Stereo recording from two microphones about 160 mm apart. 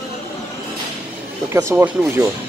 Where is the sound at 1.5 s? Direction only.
15° right (ahead or behind).